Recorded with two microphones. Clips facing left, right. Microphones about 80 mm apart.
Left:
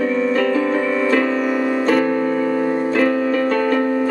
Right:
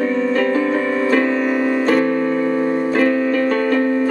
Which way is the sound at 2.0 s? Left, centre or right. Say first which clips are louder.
Right 1 dB; left.